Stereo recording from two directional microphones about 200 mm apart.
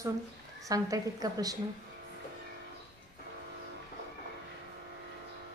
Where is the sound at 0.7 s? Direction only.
15° right (ahead or behind).